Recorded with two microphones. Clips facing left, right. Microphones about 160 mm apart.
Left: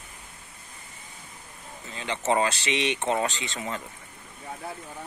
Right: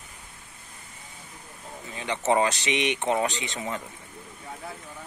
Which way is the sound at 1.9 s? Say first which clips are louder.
Right 2 dB; 15° right (ahead or behind).